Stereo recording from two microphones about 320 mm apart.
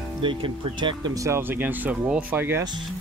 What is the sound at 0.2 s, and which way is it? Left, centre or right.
Speech, centre.